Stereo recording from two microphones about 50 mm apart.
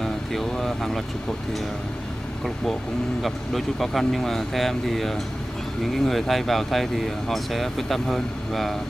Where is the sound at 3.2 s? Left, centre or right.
Centre.